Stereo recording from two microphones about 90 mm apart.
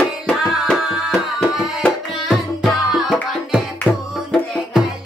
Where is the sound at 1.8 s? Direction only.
Centre (ahead or behind).